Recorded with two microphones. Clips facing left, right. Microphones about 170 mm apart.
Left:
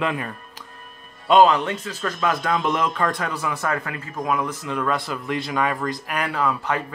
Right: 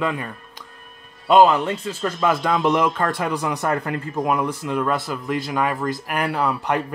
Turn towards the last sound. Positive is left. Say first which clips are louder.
# right 2 dB
turn(degrees=-15)  # may be behind; listen again after turning